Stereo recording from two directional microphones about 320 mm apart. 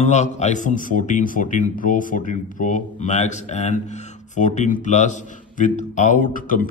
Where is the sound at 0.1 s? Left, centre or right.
Left.